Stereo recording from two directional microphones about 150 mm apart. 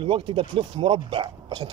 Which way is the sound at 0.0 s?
35° right (ahead or behind).